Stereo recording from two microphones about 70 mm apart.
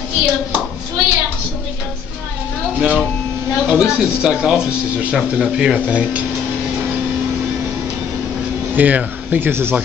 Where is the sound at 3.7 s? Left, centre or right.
Centre.